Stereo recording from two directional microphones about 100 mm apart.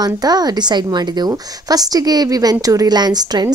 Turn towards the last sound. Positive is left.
turn(degrees=-40)  # may be behind; listen again after turning